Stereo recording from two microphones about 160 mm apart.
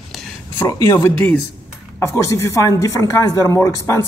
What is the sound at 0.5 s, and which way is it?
Speech, 20° left (ahead or behind).